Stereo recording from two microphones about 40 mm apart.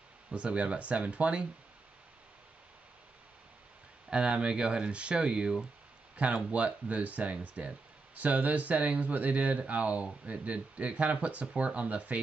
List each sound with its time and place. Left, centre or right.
0.3 s speech: right
4.1 s speech: right
6.1 s speech: right